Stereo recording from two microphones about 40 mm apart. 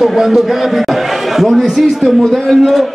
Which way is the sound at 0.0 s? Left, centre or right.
Centre.